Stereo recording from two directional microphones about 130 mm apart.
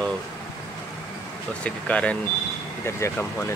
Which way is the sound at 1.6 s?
10° left (ahead or behind).